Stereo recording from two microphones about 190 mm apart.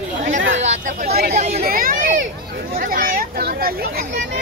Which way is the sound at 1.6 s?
50° right (ahead or behind).